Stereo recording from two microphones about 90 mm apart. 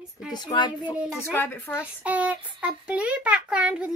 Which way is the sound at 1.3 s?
25° left (ahead or behind).